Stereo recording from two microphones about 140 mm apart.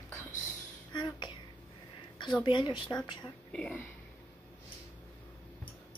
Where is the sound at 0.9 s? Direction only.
35° left (ahead or behind).